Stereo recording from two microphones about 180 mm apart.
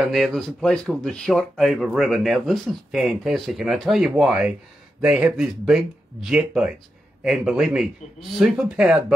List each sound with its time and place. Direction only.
0.0 s speech: centre (ahead or behind)